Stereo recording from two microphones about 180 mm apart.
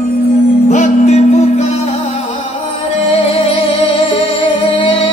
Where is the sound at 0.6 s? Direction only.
40° left (ahead or behind).